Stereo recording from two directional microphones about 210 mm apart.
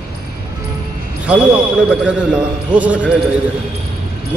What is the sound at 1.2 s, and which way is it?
A man's voice, 5° right (ahead or behind).